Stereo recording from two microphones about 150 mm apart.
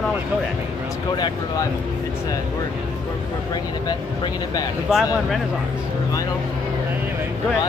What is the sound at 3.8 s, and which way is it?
Speech, 25° left (ahead or behind).